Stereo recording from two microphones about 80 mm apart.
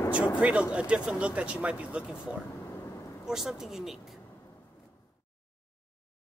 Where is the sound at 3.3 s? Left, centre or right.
Centre.